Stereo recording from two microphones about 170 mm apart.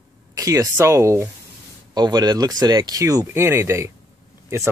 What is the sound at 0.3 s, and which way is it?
Speech, 20° right (ahead or behind).